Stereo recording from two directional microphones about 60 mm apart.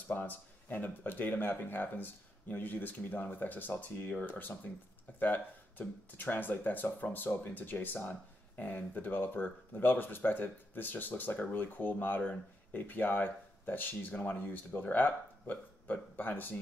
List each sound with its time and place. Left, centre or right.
0.1 s speech: left